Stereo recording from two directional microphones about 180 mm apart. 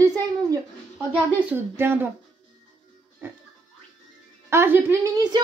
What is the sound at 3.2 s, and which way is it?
Music, 10° right (ahead or behind).